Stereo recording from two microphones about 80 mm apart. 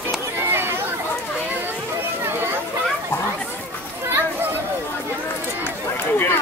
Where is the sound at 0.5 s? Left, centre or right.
Right.